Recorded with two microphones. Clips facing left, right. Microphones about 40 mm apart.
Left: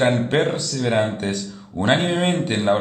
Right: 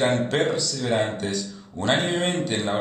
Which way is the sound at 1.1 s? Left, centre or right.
Left.